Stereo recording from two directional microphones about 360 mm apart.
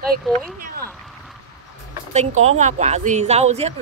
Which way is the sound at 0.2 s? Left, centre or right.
Centre.